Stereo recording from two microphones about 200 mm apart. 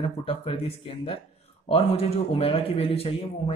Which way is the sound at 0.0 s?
30° left (ahead or behind).